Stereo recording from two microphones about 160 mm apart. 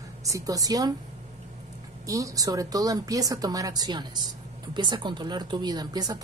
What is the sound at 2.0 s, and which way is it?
A woman's voice, 20° right (ahead or behind).